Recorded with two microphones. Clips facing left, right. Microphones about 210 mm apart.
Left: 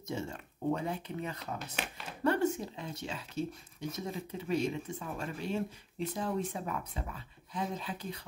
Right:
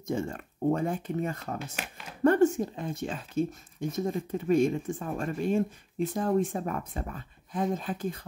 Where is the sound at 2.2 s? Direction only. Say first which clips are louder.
Right 8 dB; 50° right (ahead or behind).